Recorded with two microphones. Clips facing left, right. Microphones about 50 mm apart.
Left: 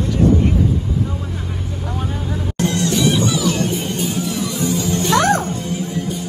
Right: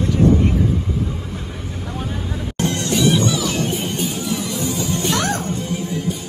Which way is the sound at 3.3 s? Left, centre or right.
Centre.